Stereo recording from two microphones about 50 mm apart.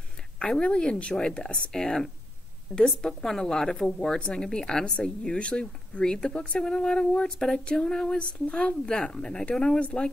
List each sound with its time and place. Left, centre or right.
0.4 s speech: centre
7.3 s speech: centre
8.2 s speech: left